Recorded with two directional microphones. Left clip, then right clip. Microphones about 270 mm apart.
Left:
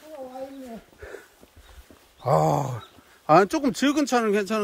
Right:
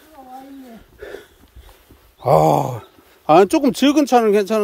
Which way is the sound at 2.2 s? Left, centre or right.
Right.